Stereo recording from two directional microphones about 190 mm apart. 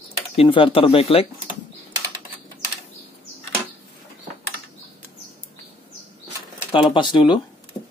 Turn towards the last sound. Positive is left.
turn(degrees=25)  # may be behind; listen again after turning